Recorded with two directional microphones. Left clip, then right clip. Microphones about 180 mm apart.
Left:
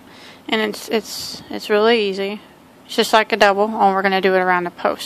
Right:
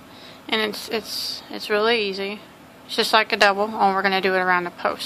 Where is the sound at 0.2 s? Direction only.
35° left (ahead or behind).